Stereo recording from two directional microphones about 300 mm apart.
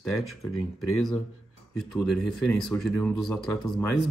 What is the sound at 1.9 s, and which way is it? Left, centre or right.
Speech, centre.